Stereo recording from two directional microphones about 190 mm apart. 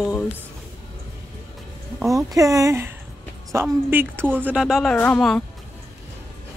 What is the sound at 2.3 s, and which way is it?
A woman's voice, 15° right (ahead or behind).